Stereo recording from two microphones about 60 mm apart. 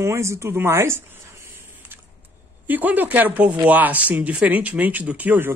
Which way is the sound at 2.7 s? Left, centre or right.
Right.